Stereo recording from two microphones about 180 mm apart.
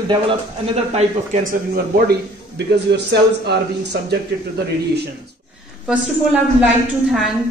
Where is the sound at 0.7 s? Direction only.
40° right (ahead or behind).